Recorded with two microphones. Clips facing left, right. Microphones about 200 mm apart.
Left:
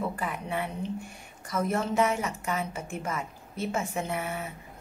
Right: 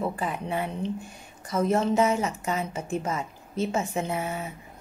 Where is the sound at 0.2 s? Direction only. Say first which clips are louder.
Right 3 dB; 30° right (ahead or behind).